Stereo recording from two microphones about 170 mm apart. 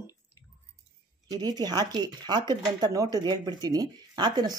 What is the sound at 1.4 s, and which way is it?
Speech, 25° right (ahead or behind).